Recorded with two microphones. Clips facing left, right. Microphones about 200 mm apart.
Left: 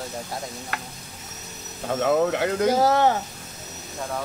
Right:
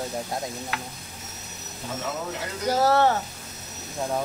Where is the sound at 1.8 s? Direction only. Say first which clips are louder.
Left 11 dB; 60° left (ahead or behind).